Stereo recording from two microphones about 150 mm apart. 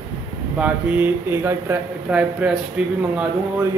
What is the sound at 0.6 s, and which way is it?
Speech, 10° right (ahead or behind).